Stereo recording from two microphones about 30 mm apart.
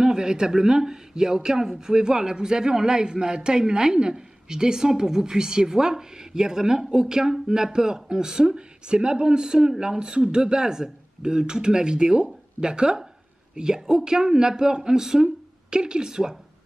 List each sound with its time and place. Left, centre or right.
0.0 s speech: right
8.5 s speech: right
13.7 s speech: centre
15.7 s speech: right